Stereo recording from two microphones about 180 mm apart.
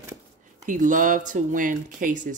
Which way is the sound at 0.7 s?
45° right (ahead or behind).